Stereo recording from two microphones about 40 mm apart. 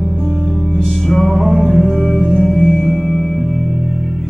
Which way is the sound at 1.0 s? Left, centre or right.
Centre.